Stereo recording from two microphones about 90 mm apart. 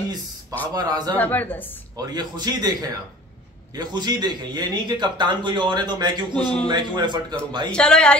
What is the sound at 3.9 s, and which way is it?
A man's voice, 50° right (ahead or behind).